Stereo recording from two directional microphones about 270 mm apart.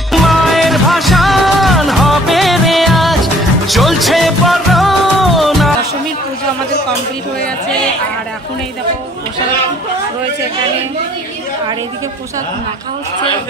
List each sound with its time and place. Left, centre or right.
0.1 s music: centre